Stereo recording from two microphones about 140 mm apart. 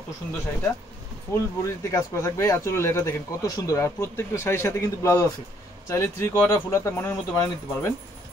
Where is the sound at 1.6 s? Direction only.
20° left (ahead or behind).